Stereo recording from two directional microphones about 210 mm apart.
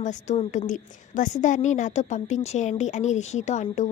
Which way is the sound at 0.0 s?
35° left (ahead or behind).